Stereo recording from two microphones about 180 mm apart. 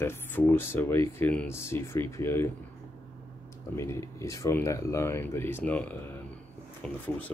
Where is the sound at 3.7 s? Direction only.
15° left (ahead or behind).